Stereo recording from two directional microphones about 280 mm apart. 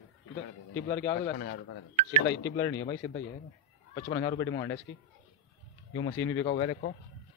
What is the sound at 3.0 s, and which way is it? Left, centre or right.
A man's voice, centre.